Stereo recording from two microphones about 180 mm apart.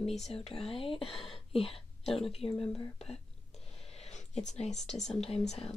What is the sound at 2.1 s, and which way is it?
Speech, centre (ahead or behind).